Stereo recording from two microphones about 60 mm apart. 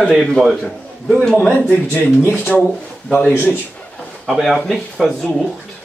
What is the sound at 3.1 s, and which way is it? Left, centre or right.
Speech, left.